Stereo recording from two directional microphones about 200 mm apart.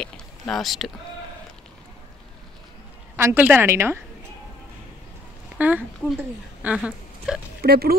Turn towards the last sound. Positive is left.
turn(degrees=-50)  # may be behind; listen again after turning